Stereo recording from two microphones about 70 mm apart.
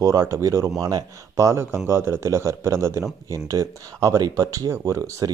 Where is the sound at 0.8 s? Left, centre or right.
Right.